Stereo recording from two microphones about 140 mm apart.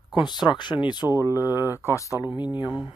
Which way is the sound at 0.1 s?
30° left (ahead or behind).